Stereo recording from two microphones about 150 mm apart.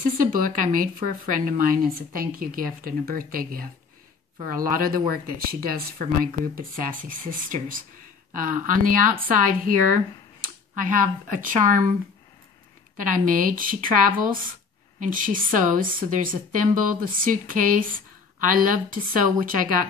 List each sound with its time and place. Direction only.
0.2 s a woman's voice: 65° right (ahead or behind)
12.9 s a woman's voice: 65° right (ahead or behind)